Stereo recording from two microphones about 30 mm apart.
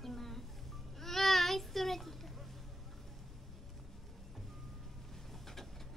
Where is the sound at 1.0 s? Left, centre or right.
Centre.